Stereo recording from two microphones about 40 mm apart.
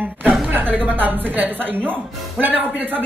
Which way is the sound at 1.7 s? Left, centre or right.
Left.